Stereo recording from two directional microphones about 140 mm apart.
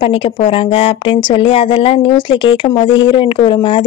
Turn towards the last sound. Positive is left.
turn(degrees=35)  # may be behind; listen again after turning